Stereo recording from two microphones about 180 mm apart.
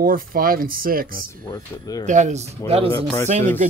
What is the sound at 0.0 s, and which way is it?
Speech, 50° right (ahead or behind).